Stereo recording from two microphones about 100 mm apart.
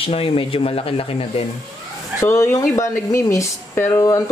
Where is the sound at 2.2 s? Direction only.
25° left (ahead or behind).